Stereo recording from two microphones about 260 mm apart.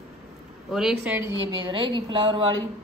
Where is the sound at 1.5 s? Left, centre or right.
Centre.